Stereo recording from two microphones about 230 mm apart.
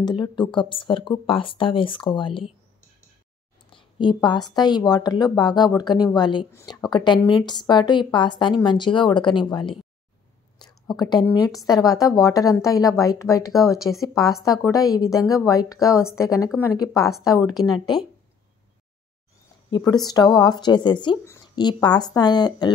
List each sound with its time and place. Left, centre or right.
0.0 s speech: centre
3.7 s a woman's voice: centre
10.9 s a woman's voice: centre
19.7 s a woman's voice: centre